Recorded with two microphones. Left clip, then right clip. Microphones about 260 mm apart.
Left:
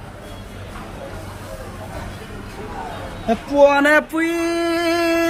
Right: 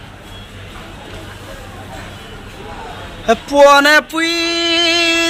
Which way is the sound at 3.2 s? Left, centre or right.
Centre.